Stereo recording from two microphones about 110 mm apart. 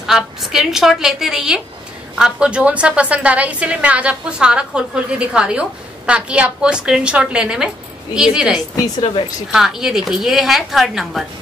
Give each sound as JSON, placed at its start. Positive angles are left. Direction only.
{"t": 0.0, "sound": "a woman's voice", "side_deg": -5}